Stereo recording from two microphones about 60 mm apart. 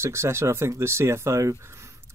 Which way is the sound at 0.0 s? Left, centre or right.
Right.